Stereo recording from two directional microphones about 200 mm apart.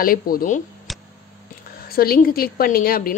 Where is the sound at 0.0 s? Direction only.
45° left (ahead or behind).